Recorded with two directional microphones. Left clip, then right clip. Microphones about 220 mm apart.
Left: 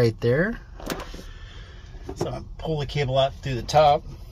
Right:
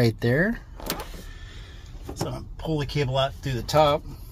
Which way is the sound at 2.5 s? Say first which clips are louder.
Even; 15° right (ahead or behind).